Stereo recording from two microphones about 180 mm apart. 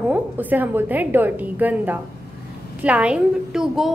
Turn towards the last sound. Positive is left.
turn(degrees=-5)  # may be behind; listen again after turning